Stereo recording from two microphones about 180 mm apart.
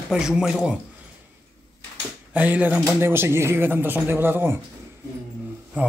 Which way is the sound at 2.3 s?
10° right (ahead or behind).